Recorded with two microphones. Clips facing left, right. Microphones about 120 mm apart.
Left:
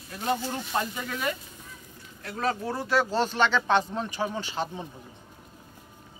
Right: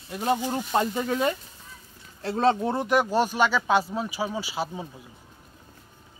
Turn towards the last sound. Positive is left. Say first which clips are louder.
# right 1 dB
turn(degrees=-10)  # may be behind; listen again after turning